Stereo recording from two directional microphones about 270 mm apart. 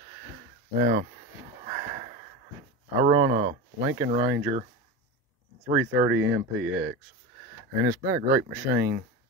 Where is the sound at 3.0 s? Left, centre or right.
Right.